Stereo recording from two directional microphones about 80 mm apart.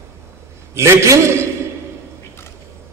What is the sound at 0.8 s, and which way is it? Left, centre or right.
Speech, right.